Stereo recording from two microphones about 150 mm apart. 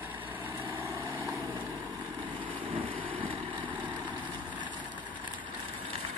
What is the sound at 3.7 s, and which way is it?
Vehicle, 10° right (ahead or behind).